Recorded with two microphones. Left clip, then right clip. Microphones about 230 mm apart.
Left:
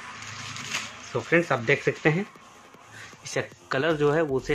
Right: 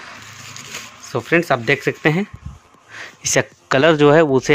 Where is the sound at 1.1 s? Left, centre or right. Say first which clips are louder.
Right 7 dB; right.